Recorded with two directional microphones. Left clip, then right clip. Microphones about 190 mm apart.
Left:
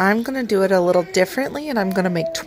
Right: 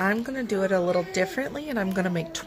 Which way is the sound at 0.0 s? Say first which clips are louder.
Left 7 dB; 40° left (ahead or behind).